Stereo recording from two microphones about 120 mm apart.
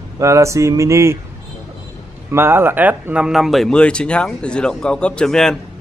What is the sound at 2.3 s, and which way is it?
Speech, 20° right (ahead or behind).